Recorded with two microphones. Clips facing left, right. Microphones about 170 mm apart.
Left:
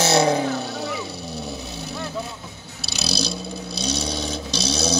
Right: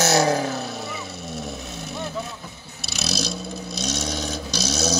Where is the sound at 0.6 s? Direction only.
30° left (ahead or behind).